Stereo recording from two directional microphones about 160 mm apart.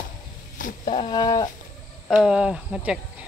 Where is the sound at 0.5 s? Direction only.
55° left (ahead or behind).